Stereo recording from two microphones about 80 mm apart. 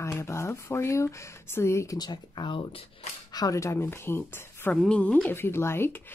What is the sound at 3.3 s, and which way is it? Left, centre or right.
Speech, left.